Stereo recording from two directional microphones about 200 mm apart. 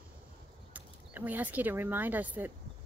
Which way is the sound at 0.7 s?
10° right (ahead or behind).